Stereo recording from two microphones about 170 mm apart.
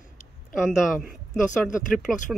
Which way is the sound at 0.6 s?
5° right (ahead or behind).